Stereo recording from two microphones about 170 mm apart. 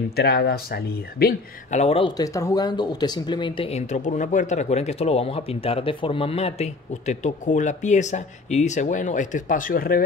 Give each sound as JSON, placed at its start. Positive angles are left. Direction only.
{"t": 0.1, "sound": "speech", "side_deg": 70}
{"t": 1.7, "sound": "speech", "side_deg": 40}